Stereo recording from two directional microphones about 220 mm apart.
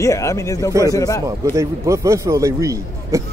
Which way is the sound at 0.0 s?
15° left (ahead or behind).